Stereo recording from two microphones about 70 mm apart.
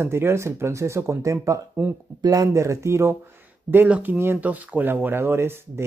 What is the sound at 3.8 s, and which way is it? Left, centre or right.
Speech, centre.